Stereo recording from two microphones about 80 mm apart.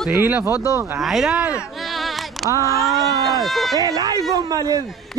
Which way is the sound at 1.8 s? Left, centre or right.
Centre.